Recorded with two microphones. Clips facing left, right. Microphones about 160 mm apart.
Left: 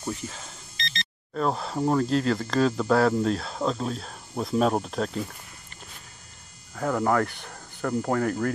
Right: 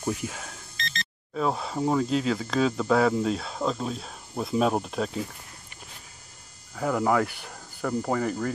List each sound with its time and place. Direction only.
0.0 s speech: 10° right (ahead or behind)
6.7 s speech: 5° right (ahead or behind)